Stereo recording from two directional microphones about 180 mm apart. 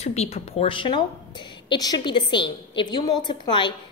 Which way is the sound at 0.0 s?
35° left (ahead or behind).